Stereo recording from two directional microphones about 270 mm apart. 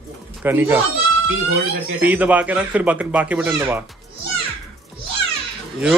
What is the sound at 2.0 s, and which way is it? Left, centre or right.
Speech, centre.